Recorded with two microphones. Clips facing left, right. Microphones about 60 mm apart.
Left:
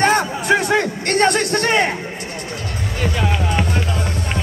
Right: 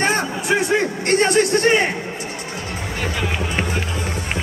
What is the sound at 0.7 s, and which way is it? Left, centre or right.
Speech, right.